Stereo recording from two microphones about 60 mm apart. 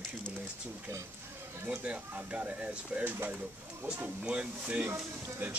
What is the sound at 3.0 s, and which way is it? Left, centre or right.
Speech, right.